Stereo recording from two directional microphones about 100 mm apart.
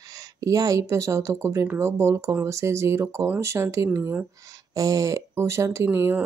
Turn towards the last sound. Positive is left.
turn(degrees=-30)  # may be behind; listen again after turning